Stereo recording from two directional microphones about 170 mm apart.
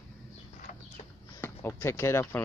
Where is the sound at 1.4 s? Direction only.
15° left (ahead or behind).